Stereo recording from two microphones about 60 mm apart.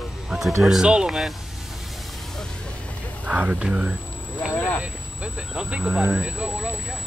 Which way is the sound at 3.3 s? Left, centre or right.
Right.